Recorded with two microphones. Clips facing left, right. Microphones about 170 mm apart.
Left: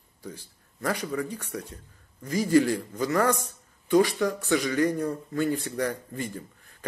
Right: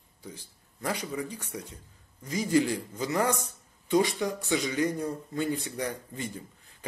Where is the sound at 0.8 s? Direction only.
15° right (ahead or behind).